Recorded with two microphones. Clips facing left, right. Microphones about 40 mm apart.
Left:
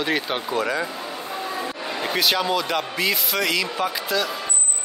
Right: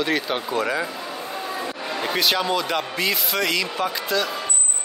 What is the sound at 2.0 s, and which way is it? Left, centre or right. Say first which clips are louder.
Speech: even; centre.